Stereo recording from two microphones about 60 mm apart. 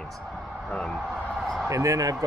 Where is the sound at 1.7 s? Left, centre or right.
Right.